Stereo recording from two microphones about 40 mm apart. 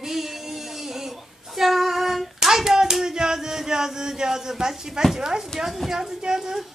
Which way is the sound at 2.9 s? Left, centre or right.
Centre.